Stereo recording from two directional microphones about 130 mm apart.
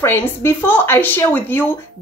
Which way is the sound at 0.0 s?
20° left (ahead or behind).